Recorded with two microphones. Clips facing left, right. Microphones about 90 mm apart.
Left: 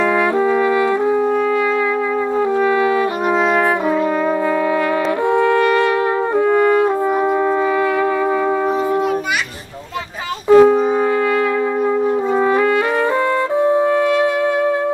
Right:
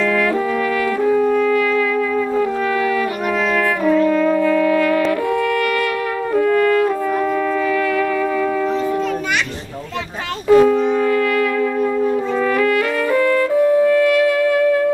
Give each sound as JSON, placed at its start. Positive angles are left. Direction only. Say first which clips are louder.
{"t": 1.0, "sound": "brass instrument", "louder": "right 1 dB", "side_deg": 25}
{"t": 3.8, "sound": "brass instrument", "louder": "right 2 dB", "side_deg": 25}
{"t": 5.3, "sound": "brass instrument", "louder": "left 4 dB", "side_deg": 25}
{"t": 10.5, "sound": "brass instrument", "louder": "left 2 dB", "side_deg": 30}
{"t": 12.5, "sound": "music", "louder": "left 1 dB", "side_deg": 25}
{"t": 13.6, "sound": "wind instrument", "louder": "right 1 dB", "side_deg": 25}